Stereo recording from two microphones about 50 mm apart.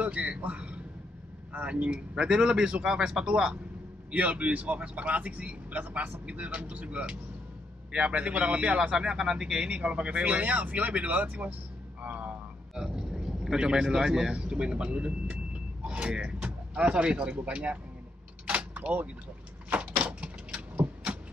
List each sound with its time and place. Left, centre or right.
0.0 s a man's voice: right
4.1 s a man's voice: right
12.0 s music: right
12.7 s a sound: centre
13.8 s a man's voice: centre
18.5 s vehicle: right
19.7 s a sound: right
20.7 s vehicle: right